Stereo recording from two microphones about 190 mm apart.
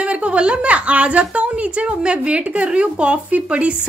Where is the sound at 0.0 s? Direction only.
5° right (ahead or behind).